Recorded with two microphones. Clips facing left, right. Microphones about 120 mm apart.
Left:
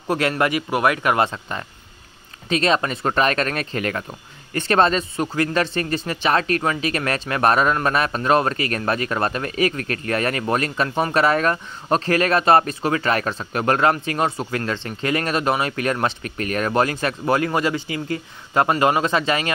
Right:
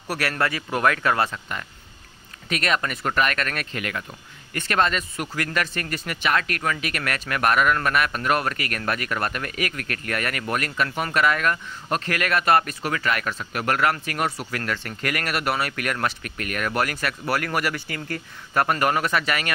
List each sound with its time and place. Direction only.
0.1 s speech: 20° left (ahead or behind)